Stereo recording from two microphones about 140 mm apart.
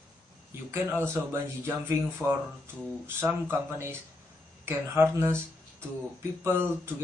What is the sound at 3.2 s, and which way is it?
Speech, 15° right (ahead or behind).